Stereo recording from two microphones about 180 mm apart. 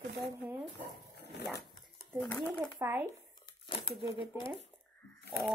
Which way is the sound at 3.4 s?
25° left (ahead or behind).